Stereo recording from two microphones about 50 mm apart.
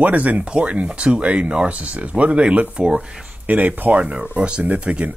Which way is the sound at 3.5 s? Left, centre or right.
Right.